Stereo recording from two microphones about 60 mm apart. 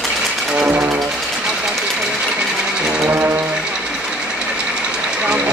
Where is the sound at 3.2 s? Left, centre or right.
Right.